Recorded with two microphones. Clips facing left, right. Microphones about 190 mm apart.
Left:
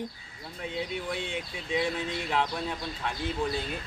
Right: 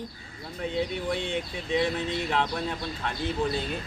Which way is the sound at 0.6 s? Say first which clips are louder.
Right 5 dB; 5° left (ahead or behind).